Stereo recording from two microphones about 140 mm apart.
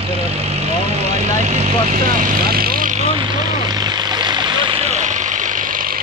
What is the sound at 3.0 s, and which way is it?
Vehicle, 40° right (ahead or behind).